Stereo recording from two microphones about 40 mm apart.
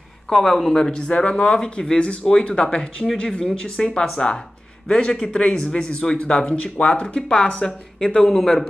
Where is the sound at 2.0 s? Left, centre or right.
Left; by 8.6 s centre.